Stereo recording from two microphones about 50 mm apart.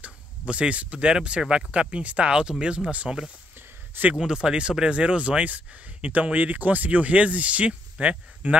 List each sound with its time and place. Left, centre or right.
0.0 s speech: right
4.1 s speech: centre